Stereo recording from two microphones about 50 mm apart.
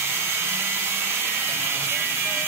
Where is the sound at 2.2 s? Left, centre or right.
Right.